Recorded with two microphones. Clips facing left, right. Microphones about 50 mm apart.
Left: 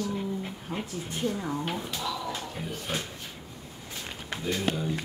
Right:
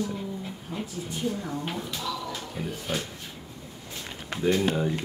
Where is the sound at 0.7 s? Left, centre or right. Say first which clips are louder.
Even; left.